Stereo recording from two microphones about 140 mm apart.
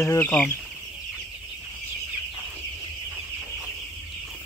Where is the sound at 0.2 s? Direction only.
15° left (ahead or behind).